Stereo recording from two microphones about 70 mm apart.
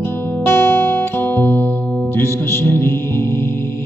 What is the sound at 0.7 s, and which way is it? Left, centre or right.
Guitar, left.